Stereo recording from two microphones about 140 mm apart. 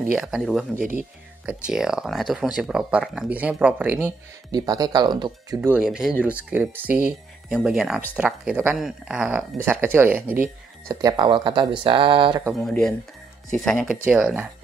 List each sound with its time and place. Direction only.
0.1 s speech: 5° right (ahead or behind)
0.7 s speech: 80° right
1.4 s speech: 5° right (ahead or behind)
4.5 s speech: 30° right (ahead or behind)
5.8 s speech: 5° right (ahead or behind)
10.9 s speech: 25° right (ahead or behind)
12.5 s speech: 5° left (ahead or behind)
14.0 s speech: 10° right (ahead or behind)